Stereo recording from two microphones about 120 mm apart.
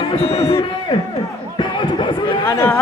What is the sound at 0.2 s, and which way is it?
Speech, 60° left (ahead or behind).